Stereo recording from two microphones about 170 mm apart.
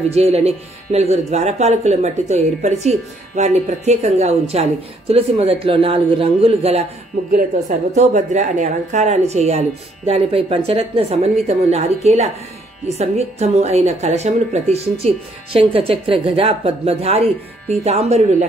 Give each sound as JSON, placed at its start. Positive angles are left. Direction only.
{"t": 0.1, "sound": "speech", "side_deg": -40}
{"t": 7.9, "sound": "speech", "side_deg": -45}